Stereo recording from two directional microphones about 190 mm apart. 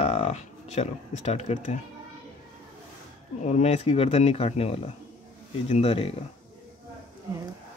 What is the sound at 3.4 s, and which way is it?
Speech, 35° left (ahead or behind).